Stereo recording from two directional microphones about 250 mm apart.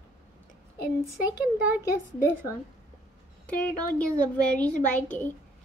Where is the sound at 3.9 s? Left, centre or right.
Centre.